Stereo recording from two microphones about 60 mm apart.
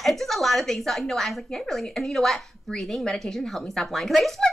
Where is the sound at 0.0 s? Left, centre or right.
Centre.